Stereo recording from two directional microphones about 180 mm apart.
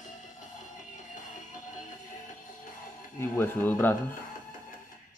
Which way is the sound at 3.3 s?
10° left (ahead or behind).